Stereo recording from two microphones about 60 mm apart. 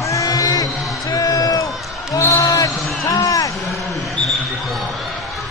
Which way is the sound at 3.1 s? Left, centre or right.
Left.